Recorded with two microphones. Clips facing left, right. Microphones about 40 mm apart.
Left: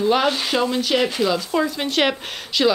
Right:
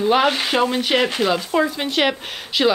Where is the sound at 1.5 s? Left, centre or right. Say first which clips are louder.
Right 2 dB; centre.